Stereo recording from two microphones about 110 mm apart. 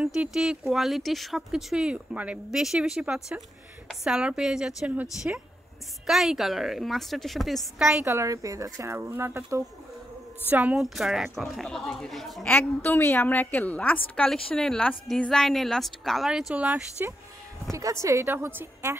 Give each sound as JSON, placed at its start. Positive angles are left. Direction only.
{"t": 0.0, "sound": "a woman's voice", "side_deg": -5}
{"t": 6.0, "sound": "speech", "side_deg": 0}
{"t": 8.0, "sound": "a woman's voice", "side_deg": -25}
{"t": 10.8, "sound": "speech", "side_deg": 0}
{"t": 12.4, "sound": "a woman's voice", "side_deg": 20}
{"t": 17.6, "sound": "a woman's voice", "side_deg": -30}